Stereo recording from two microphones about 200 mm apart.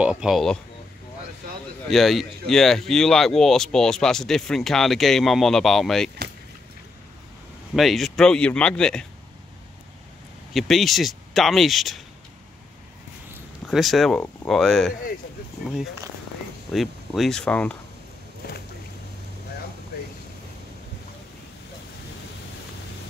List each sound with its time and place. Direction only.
0.0 s speech: 5° right (ahead or behind)
1.9 s speech: centre (ahead or behind)
7.7 s speech: centre (ahead or behind)
10.5 s speech: centre (ahead or behind)
13.7 s speech: centre (ahead or behind)
16.7 s speech: centre (ahead or behind)
18.4 s boat: 50° left (ahead or behind)